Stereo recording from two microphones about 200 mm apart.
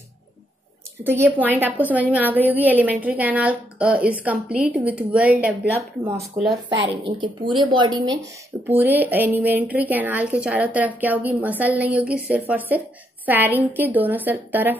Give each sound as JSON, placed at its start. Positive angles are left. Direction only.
{"t": 1.0, "sound": "a woman's voice", "side_deg": -10}
{"t": 6.4, "sound": "speech", "side_deg": -35}
{"t": 7.1, "sound": "speech", "side_deg": -25}
{"t": 8.6, "sound": "a woman's voice", "side_deg": -10}